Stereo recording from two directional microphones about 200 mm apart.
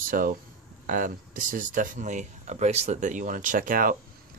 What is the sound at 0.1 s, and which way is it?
Speech, 45° right (ahead or behind).